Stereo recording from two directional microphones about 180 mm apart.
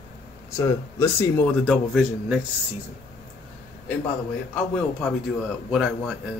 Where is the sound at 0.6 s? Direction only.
15° left (ahead or behind).